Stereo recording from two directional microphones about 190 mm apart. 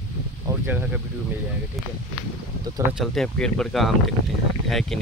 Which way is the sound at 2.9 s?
Centre (ahead or behind).